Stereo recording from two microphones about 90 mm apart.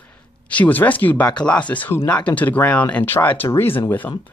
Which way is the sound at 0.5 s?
15° left (ahead or behind).